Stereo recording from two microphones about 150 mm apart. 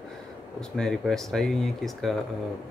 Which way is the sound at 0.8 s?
5° left (ahead or behind).